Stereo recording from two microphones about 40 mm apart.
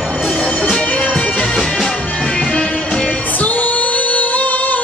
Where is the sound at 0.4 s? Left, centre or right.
Centre.